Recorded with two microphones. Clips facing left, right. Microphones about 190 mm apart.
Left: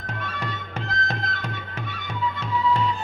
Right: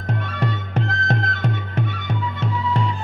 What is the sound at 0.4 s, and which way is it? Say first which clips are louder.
Music: right 7 dB; 60° right (ahead or behind).